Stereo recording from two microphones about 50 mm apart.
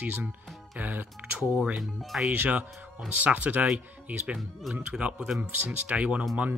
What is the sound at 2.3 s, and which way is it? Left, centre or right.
Speech, right.